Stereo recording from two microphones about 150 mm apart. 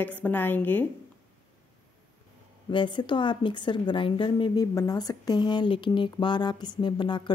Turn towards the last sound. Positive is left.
turn(degrees=30)  # may be behind; listen again after turning